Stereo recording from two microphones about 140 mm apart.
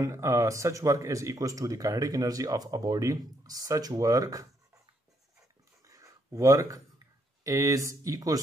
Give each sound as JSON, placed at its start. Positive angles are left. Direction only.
{"t": 0.0, "sound": "speech", "side_deg": -20}
{"t": 5.9, "sound": "a sound", "side_deg": -25}
{"t": 7.4, "sound": "speech", "side_deg": -25}